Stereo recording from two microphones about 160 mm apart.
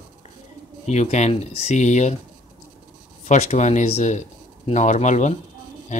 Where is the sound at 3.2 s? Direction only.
45° left (ahead or behind).